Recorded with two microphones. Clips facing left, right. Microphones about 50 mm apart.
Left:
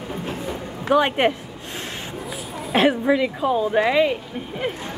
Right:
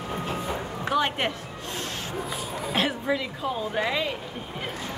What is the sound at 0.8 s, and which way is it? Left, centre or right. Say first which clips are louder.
Speech: left 8 dB; centre.